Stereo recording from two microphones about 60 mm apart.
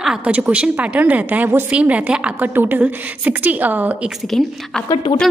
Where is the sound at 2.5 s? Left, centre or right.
Right.